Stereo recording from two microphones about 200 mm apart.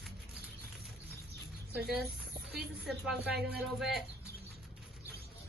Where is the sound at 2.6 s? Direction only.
Centre (ahead or behind).